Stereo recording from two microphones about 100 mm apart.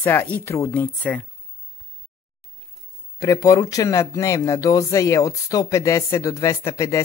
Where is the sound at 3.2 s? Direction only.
35° left (ahead or behind).